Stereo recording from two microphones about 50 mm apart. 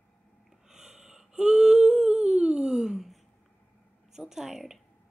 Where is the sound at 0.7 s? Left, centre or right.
Centre.